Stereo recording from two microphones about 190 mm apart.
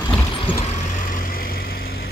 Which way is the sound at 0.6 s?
35° left (ahead or behind).